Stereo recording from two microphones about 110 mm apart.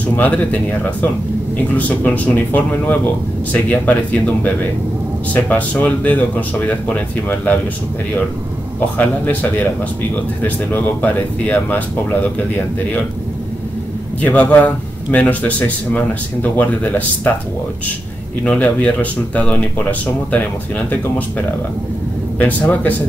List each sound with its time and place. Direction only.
0.1 s speech: 15° left (ahead or behind)
8.9 s speech: 15° left (ahead or behind)
14.2 s speech: 15° left (ahead or behind)
18.4 s speech: 10° left (ahead or behind)